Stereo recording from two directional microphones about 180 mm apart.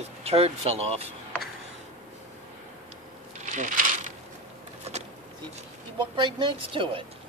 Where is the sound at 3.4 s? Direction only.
45° right (ahead or behind).